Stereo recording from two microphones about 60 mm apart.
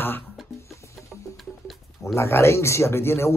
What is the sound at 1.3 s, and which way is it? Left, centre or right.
Music, centre.